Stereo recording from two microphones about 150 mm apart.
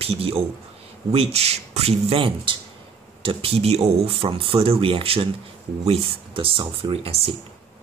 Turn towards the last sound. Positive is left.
turn(degrees=-40)  # may be behind; listen again after turning